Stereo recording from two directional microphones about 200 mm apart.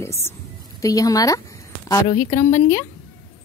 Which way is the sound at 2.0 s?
35° left (ahead or behind).